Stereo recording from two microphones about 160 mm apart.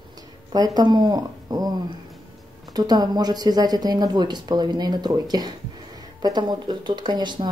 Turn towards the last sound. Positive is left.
turn(degrees=-25)  # may be behind; listen again after turning